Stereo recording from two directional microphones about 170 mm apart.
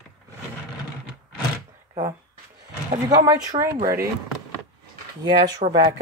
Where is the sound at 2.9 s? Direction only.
20° right (ahead or behind).